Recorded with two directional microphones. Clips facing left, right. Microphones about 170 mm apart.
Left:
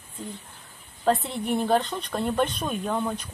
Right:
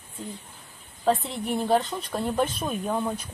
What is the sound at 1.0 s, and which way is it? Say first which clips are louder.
Speech: left 1 dB; centre (ahead or behind).